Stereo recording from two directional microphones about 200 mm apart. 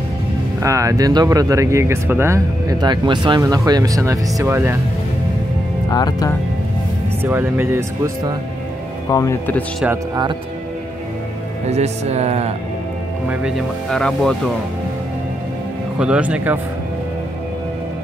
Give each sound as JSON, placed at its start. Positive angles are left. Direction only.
{"t": 0.6, "sound": "speech", "side_deg": -15}
{"t": 5.9, "sound": "speech", "side_deg": 20}
{"t": 7.2, "sound": "speech", "side_deg": -10}
{"t": 9.1, "sound": "speech", "side_deg": 15}
{"t": 9.8, "sound": "speech", "side_deg": -20}
{"t": 11.6, "sound": "speech", "side_deg": -35}
{"t": 13.3, "sound": "speech", "side_deg": 0}
{"t": 16.0, "sound": "speech", "side_deg": -5}